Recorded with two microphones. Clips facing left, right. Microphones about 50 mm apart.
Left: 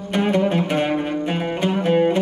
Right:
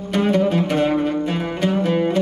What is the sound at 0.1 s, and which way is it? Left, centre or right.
Music, left.